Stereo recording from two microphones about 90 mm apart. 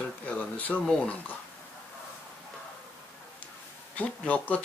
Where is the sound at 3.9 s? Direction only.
15° left (ahead or behind).